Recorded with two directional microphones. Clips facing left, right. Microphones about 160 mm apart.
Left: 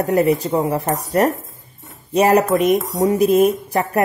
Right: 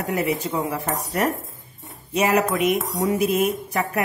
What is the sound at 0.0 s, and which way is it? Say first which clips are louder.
Speech: left 8 dB; 35° left (ahead or behind).